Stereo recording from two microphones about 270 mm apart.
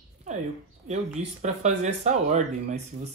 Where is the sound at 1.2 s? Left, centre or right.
Right.